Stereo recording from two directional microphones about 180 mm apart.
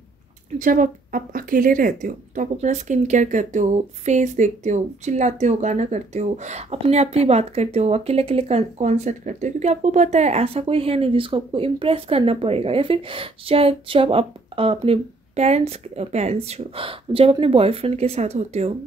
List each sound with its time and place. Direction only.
0.6 s a woman's voice: 50° right (ahead or behind)